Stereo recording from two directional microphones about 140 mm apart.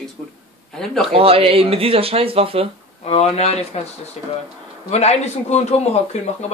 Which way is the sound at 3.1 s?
50° left (ahead or behind).